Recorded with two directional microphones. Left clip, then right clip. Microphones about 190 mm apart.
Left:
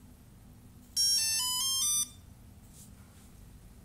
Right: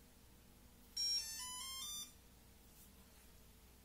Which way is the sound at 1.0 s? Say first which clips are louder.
Left 13 dB; 25° left (ahead or behind).